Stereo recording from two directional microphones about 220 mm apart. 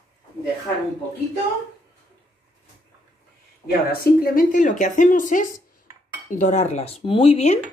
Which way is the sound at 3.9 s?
40° left (ahead or behind).